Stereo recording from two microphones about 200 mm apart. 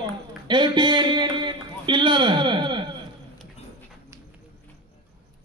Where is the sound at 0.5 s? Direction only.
25° right (ahead or behind).